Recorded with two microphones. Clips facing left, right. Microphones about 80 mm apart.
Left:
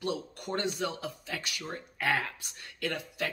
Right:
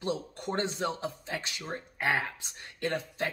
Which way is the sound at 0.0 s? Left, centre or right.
Right.